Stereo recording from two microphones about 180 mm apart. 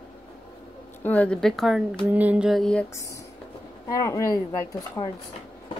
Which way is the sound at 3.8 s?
20° left (ahead or behind).